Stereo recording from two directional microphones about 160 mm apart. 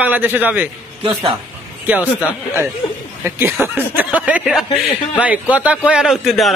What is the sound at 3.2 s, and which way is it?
A man's voice, 10° right (ahead or behind).